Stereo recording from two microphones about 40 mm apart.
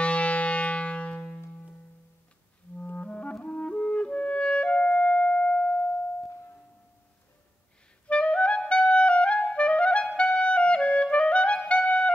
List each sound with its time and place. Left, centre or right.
0.0 s music: left
2.8 s music: left
3.4 s clarinet: left
8.1 s clarinet: left